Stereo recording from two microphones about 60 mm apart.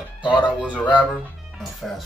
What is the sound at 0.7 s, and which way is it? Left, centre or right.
Speech, left.